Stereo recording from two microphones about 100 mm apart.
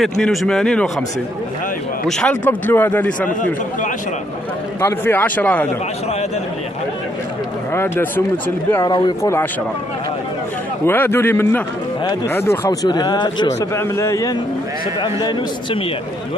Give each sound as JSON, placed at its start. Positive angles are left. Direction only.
{"t": 0.0, "sound": "speech", "side_deg": 0}
{"t": 2.0, "sound": "speech", "side_deg": 5}
{"t": 2.4, "sound": "speech", "side_deg": 20}
{"t": 4.7, "sound": "speech", "side_deg": 25}
{"t": 7.7, "sound": "a man's voice", "side_deg": 25}
{"t": 8.8, "sound": "speech", "side_deg": 45}
{"t": 10.9, "sound": "a man's voice", "side_deg": 25}
{"t": 12.8, "sound": "speech", "side_deg": 45}
{"t": 13.5, "sound": "a man's voice", "side_deg": 30}
{"t": 15.0, "sound": "speech", "side_deg": 45}